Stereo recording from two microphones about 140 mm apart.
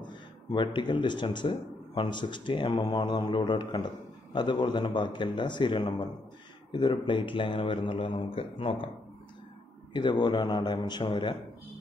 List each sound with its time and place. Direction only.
0.0 s speech: 35° left (ahead or behind)
9.9 s speech: 35° left (ahead or behind)